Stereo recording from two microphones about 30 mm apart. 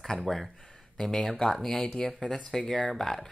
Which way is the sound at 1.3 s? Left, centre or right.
Centre.